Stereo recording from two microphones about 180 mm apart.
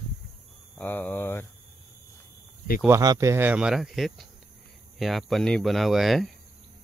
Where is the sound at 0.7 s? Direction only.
10° left (ahead or behind).